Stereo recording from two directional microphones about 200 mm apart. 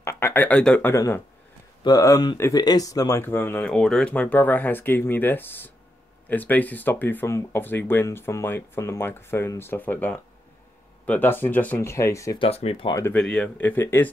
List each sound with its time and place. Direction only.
0.0 s speech: 15° left (ahead or behind)
12.4 s speech: 30° left (ahead or behind)
12.9 s speech: 15° left (ahead or behind)